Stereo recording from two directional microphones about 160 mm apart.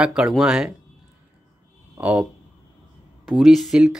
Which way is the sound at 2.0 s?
10° right (ahead or behind).